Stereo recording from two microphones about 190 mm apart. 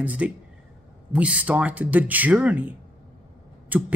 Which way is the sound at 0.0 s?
10° right (ahead or behind).